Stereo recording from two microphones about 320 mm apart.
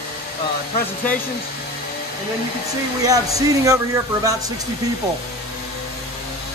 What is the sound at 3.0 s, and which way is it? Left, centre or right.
Speech, centre.